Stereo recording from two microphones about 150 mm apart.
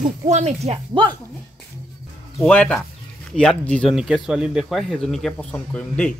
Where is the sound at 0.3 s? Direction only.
50° right (ahead or behind).